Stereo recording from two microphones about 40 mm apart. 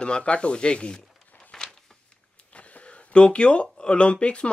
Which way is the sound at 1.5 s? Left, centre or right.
Centre.